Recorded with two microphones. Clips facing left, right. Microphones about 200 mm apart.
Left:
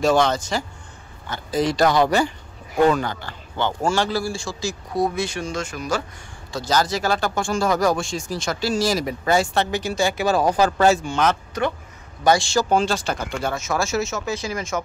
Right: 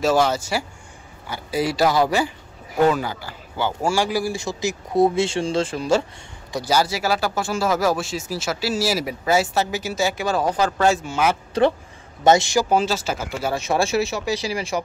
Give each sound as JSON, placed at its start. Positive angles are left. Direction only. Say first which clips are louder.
{"t": 0.0, "sound": "speech", "louder": "even", "side_deg": -5}
{"t": 6.5, "sound": "speech", "louder": "right 1 dB", "side_deg": -10}
{"t": 10.2, "sound": "speech", "louder": "left 5 dB", "side_deg": 40}
{"t": 10.9, "sound": "speech", "louder": "left 1 dB", "side_deg": -5}
{"t": 11.6, "sound": "speech", "louder": "right 6 dB", "side_deg": -30}
{"t": 12.6, "sound": "speech", "louder": "even", "side_deg": -5}
{"t": 13.5, "sound": "speech", "louder": "right 4 dB", "side_deg": -30}
{"t": 14.7, "sound": "speech", "louder": "right 1 dB", "side_deg": -15}